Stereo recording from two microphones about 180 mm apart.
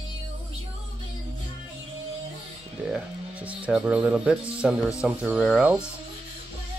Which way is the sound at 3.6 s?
5° right (ahead or behind).